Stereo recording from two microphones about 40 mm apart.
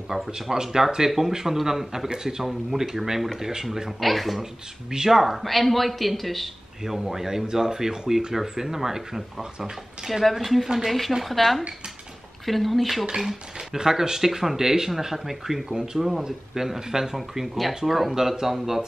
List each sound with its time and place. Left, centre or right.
0.4 s speech: centre
10.9 s speech: centre
13.0 s speech: centre